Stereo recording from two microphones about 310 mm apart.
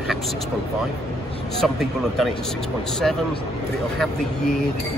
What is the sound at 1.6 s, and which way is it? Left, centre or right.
Speech, centre.